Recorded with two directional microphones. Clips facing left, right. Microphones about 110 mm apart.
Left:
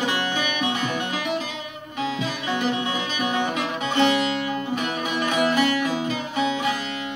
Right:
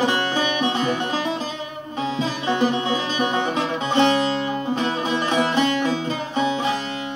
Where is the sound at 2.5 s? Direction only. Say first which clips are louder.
Right 4 dB; 35° right (ahead or behind).